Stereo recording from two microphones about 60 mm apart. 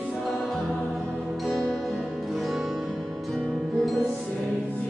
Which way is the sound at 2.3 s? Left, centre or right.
Centre.